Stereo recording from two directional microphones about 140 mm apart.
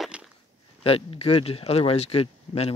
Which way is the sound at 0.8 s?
45° left (ahead or behind).